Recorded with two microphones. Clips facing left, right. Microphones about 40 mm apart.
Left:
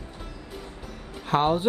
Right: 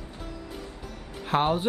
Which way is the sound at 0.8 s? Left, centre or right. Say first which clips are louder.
Even; centre.